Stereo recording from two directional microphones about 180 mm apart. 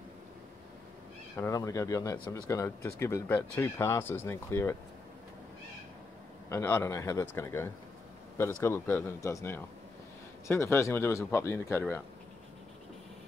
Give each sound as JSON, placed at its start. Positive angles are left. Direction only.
{"t": 1.3, "sound": "speech", "side_deg": 20}
{"t": 6.5, "sound": "speech", "side_deg": 15}